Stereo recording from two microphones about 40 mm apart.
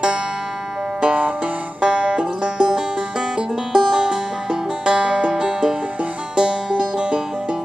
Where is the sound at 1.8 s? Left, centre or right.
Right.